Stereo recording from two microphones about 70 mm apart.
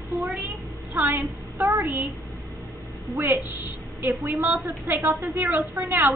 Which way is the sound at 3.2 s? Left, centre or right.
Right.